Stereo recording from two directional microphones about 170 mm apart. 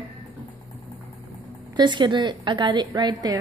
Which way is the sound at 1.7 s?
25° right (ahead or behind).